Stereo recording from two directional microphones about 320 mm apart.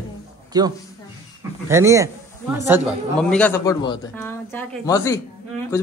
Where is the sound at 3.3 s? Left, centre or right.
Centre.